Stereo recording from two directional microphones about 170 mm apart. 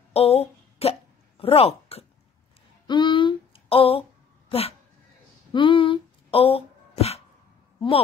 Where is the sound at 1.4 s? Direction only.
35° left (ahead or behind).